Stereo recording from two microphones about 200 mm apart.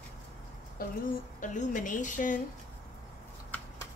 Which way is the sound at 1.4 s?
40° left (ahead or behind).